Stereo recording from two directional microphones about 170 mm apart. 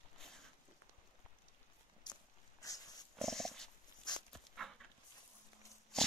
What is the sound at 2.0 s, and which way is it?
Walk, 20° left (ahead or behind).